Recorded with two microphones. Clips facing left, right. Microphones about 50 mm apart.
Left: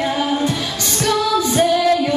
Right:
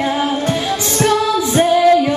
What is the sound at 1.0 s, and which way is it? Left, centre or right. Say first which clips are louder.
Female singing: right 1 dB; centre.